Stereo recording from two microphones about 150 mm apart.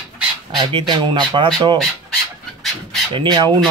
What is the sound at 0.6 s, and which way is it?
Speech, 30° right (ahead or behind).